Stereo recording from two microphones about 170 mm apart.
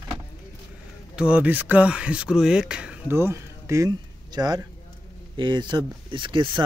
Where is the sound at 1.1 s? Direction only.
5° right (ahead or behind).